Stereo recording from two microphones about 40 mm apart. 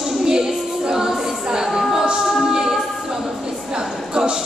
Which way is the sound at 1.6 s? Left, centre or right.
Centre.